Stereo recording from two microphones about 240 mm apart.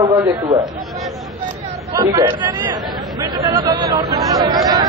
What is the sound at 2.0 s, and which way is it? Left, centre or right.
Speech, centre.